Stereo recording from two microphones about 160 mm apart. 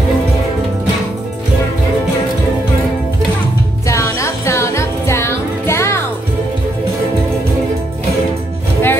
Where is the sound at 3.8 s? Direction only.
20° left (ahead or behind).